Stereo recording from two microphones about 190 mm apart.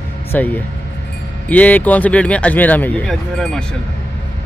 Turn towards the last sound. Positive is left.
turn(degrees=5)  # may be behind; listen again after turning